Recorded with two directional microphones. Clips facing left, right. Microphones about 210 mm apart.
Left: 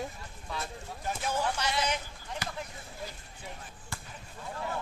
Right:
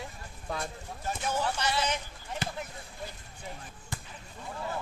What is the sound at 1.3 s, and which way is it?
Speech, 10° left (ahead or behind).